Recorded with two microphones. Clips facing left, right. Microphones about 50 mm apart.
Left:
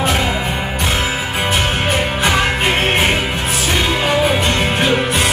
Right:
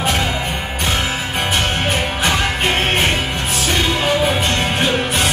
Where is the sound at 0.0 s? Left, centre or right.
Centre.